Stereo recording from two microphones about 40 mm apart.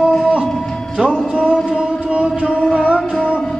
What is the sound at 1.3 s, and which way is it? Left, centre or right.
Music, right.